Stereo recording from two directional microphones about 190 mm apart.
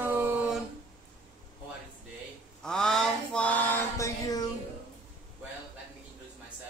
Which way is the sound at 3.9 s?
15° left (ahead or behind).